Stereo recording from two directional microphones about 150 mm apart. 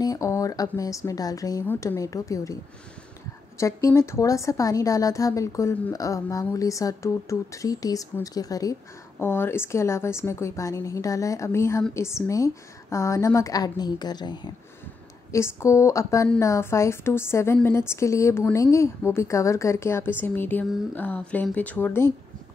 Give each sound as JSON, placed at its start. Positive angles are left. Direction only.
{"t": 0.0, "sound": "a woman's voice", "side_deg": 20}
{"t": 3.5, "sound": "a woman's voice", "side_deg": 20}
{"t": 15.3, "sound": "a woman's voice", "side_deg": 20}